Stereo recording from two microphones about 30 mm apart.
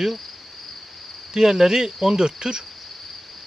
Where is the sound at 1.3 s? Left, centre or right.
Centre.